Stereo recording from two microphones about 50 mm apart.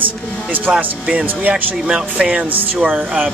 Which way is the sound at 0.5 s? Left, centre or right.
Right.